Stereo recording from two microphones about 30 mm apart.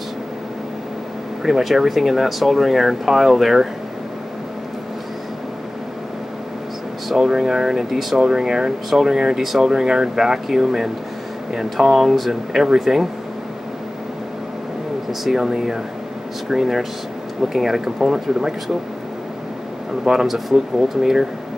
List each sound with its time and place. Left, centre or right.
1.4 s speech: centre
7.2 s speech: right
9.4 s speech: centre
9.7 s speech: right
12.0 s speech: centre
15.0 s speech: centre
20.2 s speech: centre
21.0 s speech: centre